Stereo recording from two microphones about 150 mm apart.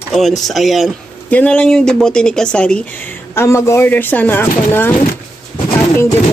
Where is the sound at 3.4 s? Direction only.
20° left (ahead or behind).